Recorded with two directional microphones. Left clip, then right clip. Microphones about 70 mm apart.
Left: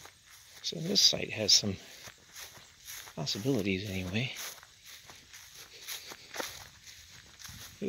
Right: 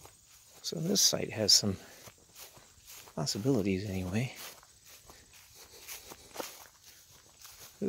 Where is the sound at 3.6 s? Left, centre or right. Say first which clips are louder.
Even; right.